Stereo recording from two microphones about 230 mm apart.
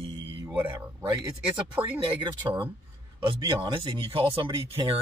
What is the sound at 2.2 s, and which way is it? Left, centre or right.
Speech, right.